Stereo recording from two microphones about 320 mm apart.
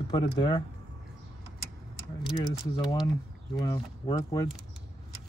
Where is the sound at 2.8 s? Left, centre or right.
Centre.